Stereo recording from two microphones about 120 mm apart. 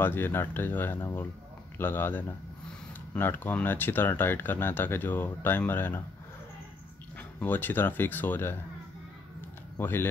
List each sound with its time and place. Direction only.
0.0 s speech: 15° left (ahead or behind)
7.2 s speech: 15° left (ahead or behind)
9.8 s speech: 20° left (ahead or behind)